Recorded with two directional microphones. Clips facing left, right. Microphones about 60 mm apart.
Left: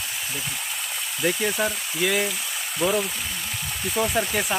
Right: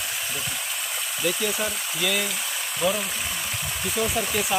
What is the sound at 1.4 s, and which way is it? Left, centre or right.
Speech, left.